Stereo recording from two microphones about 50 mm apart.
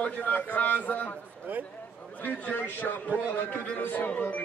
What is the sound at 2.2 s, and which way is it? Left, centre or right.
A man's voice, left.